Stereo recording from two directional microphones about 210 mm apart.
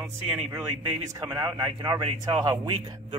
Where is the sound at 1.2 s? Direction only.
15° right (ahead or behind).